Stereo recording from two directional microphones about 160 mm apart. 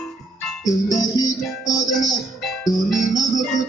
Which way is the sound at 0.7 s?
20° left (ahead or behind).